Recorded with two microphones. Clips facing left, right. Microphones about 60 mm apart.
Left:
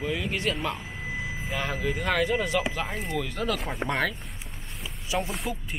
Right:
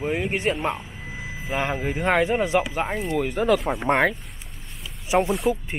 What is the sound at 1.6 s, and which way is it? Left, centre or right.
Speech, right.